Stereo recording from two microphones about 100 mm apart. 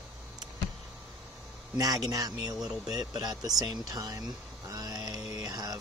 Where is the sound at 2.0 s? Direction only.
40° right (ahead or behind).